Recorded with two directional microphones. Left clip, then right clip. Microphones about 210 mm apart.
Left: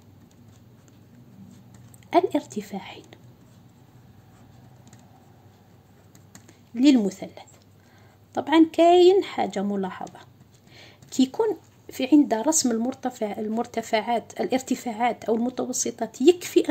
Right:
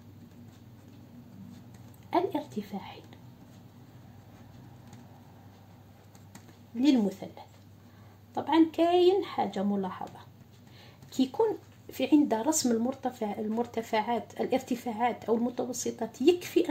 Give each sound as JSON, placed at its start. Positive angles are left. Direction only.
{"t": 2.0, "sound": "a woman's voice", "side_deg": 45}
{"t": 6.8, "sound": "a woman's voice", "side_deg": 45}
{"t": 11.9, "sound": "speech", "side_deg": 35}